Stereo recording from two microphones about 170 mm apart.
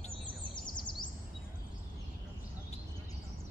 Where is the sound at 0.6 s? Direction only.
25° left (ahead or behind).